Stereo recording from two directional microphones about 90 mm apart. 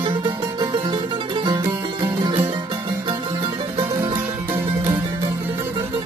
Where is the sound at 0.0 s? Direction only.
65° right (ahead or behind).